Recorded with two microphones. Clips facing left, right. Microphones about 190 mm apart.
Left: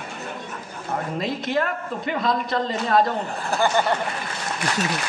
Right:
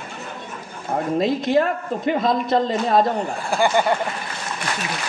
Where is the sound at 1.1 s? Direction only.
45° right (ahead or behind).